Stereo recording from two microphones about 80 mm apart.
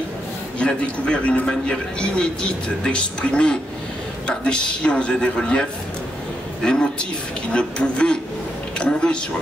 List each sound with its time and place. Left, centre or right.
0.6 s a man's voice: centre